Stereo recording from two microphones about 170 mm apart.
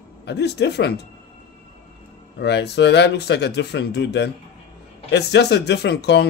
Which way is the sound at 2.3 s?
80° left.